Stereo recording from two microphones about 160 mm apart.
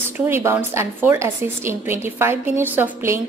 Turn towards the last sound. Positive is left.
turn(degrees=-15)  # may be behind; listen again after turning